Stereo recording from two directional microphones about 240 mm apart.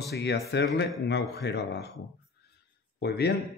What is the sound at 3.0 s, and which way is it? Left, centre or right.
Speech, left.